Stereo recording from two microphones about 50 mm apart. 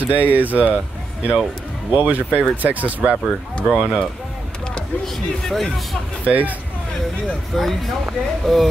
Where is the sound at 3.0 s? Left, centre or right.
Right.